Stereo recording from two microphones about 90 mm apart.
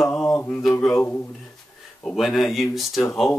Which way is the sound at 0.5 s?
5° left (ahead or behind).